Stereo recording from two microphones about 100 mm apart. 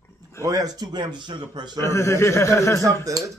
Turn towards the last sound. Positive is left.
turn(degrees=-35)  # may be behind; listen again after turning